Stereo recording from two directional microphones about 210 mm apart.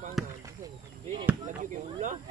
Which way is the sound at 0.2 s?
Centre (ahead or behind).